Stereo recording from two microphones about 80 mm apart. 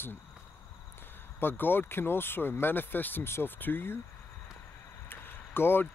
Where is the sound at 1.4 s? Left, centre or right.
Left.